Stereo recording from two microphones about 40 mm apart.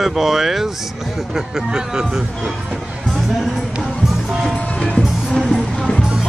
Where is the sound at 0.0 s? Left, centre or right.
Centre.